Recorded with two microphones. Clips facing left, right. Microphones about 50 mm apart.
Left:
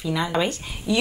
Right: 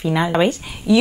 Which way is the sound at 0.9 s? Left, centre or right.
Centre.